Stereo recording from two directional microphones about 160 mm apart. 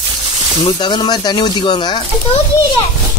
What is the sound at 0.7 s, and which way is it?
Speech, 30° left (ahead or behind).